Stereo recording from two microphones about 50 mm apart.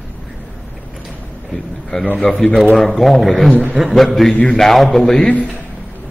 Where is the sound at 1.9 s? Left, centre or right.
Centre.